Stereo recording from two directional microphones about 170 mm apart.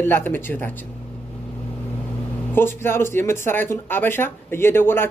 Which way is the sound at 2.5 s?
15° left (ahead or behind).